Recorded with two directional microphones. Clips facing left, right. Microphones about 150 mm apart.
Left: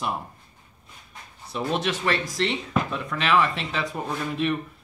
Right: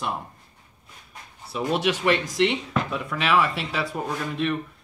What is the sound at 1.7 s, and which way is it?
Speech, 10° right (ahead or behind).